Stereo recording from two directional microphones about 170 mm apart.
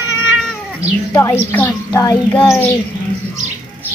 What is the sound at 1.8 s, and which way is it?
Child singing, 20° left (ahead or behind).